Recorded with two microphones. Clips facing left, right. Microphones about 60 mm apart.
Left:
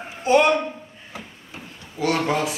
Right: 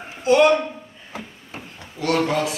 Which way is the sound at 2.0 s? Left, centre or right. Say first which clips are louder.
Right 1 dB; centre.